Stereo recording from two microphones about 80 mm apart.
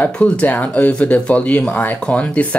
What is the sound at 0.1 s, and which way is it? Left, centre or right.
Speech, centre.